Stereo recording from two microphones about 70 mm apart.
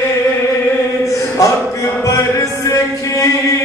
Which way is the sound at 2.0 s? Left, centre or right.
Left.